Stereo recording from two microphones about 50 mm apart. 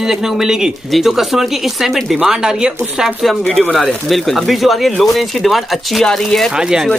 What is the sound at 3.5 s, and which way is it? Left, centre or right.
Speech, left.